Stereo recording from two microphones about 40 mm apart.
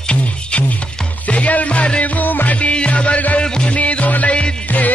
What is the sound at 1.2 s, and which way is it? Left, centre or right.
Music, left.